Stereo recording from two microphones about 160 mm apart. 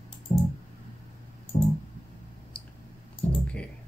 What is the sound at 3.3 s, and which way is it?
Typing, 5° left (ahead or behind).